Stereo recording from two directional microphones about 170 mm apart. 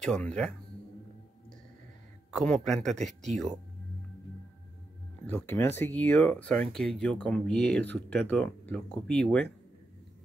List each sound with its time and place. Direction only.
0.0 s speech: 5° left (ahead or behind)
2.3 s speech: 5° left (ahead or behind)
3.0 s speech: 45° right (ahead or behind)
5.2 s speech: 10° left (ahead or behind)